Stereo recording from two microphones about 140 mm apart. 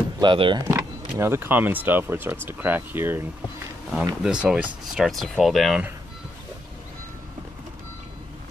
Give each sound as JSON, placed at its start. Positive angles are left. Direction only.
{"t": 0.2, "sound": "speech", "side_deg": -35}
{"t": 0.7, "sound": "speech", "side_deg": -20}
{"t": 4.2, "sound": "speech", "side_deg": -5}